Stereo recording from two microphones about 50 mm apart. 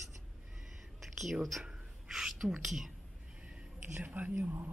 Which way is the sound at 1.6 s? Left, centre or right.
Centre.